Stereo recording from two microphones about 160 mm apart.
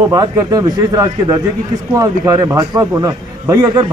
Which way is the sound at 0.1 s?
20° right (ahead or behind).